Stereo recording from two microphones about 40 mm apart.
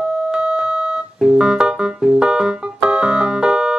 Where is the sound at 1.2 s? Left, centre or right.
Centre.